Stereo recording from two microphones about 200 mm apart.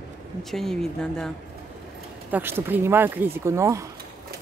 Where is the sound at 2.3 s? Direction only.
10° right (ahead or behind).